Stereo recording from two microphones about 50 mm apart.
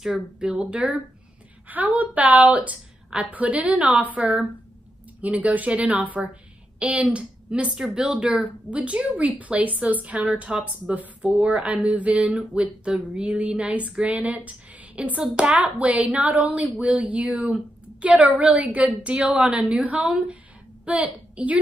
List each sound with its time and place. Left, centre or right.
0.0 s speech: centre
1.7 s speech: right
5.2 s a woman's voice: right
12.4 s a woman's voice: centre